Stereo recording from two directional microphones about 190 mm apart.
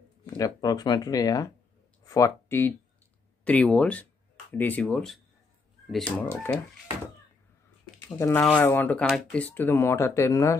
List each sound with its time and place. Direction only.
0.4 s speech: 20° left (ahead or behind)
8.2 s speech: 15° left (ahead or behind)